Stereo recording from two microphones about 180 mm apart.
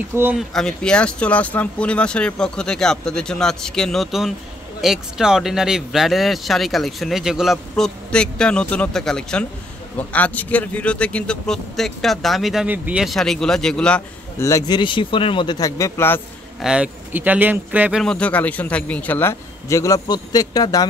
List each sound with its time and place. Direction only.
0.1 s speech: 10° right (ahead or behind)
0.4 s speech: centre (ahead or behind)
14.4 s speech: 20° left (ahead or behind)
16.6 s speech: 5° right (ahead or behind)
18.0 s a man's voice: 5° left (ahead or behind); by 20.8 s 20° left (ahead or behind)